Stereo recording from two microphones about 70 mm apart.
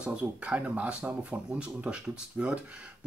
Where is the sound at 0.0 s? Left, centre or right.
Centre.